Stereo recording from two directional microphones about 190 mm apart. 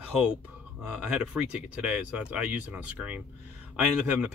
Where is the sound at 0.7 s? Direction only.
5° right (ahead or behind).